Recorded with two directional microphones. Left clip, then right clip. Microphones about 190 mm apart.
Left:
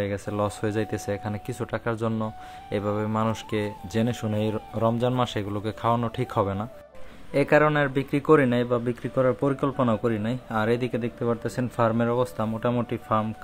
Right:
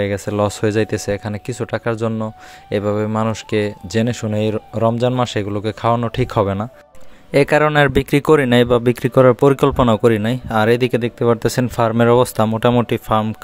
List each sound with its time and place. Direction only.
0.0 s speech: 45° right (ahead or behind)
7.3 s speech: 60° right (ahead or behind)